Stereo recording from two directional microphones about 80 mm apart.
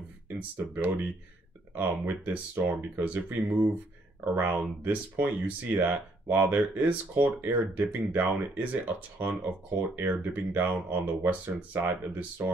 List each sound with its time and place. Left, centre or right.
0.4 s speech: right